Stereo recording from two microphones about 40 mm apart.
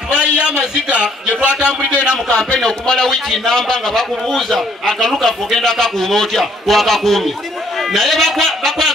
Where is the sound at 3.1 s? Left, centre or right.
Centre.